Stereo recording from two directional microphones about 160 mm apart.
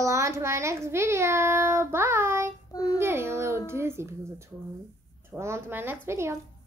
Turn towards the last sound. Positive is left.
turn(degrees=-15)  # may be behind; listen again after turning